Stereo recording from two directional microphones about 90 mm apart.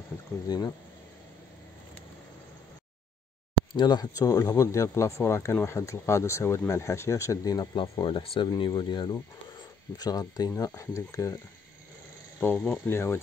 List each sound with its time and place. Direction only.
0.5 s speech: 45° left (ahead or behind)
3.7 s speech: 50° left (ahead or behind)
8.0 s speech: 80° left
8.5 s speech: 55° left (ahead or behind); by 11.3 s 35° left (ahead or behind)
12.4 s speech: 25° left (ahead or behind)
12.9 s speech: 25° left (ahead or behind)